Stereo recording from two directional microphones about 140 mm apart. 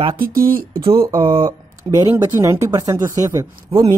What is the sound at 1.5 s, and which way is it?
Speech, 25° right (ahead or behind).